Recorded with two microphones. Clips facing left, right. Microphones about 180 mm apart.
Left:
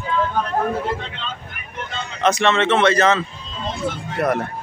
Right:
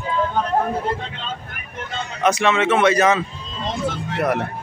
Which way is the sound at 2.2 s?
10° right (ahead or behind).